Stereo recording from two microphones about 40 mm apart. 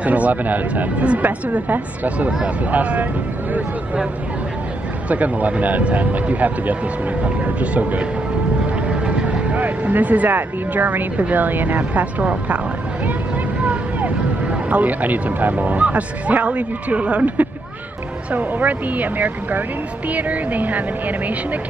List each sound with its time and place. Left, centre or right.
0.0 s speech: right
5.1 s speech: right
9.0 s speech: right
13.7 s speech: right